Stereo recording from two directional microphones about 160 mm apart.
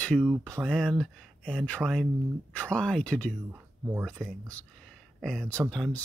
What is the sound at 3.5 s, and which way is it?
Speech, 10° right (ahead or behind).